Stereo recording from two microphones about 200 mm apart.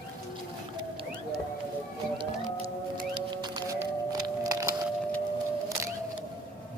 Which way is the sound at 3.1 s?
20° right (ahead or behind).